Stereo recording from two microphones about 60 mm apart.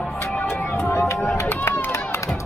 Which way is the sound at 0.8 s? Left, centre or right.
Left.